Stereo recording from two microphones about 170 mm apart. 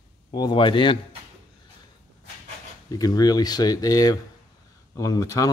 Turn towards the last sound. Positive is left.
turn(degrees=20)  # may be behind; listen again after turning